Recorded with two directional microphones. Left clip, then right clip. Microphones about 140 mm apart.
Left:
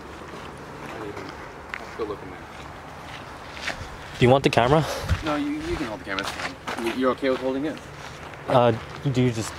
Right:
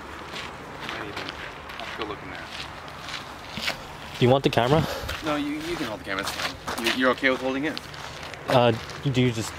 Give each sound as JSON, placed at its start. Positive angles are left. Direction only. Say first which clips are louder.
{"t": 3.7, "sound": "zipper", "louder": "right 1 dB", "side_deg": -10}
{"t": 4.2, "sound": "speech", "louder": "left 2 dB", "side_deg": 5}
{"t": 6.8, "sound": "speech", "louder": "right 2 dB", "side_deg": -30}
{"t": 8.5, "sound": "speech", "louder": "left 1 dB", "side_deg": -5}